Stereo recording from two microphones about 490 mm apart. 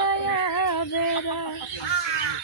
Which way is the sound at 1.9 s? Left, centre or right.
Left.